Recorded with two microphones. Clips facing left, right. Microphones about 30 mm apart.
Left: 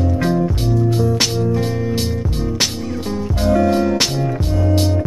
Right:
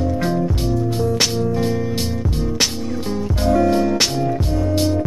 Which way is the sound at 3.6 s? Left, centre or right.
Left.